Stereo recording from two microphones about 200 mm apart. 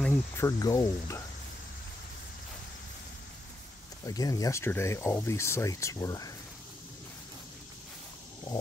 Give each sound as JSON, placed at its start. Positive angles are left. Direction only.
{"t": 0.0, "sound": "speech", "side_deg": 15}
{"t": 4.0, "sound": "speech", "side_deg": 20}